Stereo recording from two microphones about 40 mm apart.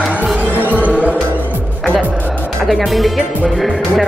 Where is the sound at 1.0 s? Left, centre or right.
Right.